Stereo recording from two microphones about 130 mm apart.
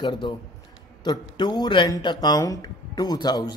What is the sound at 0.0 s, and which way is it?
Speech, 35° left (ahead or behind).